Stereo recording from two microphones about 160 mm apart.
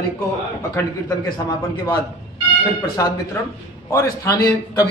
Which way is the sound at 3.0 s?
20° left (ahead or behind).